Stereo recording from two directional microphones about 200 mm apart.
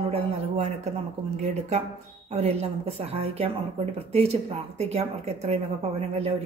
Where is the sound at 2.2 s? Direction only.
30° right (ahead or behind).